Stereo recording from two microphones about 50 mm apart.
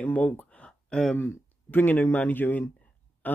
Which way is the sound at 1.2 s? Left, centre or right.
Left.